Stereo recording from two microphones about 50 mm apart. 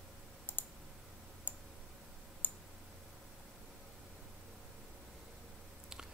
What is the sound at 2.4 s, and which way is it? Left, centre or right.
Clicking, left.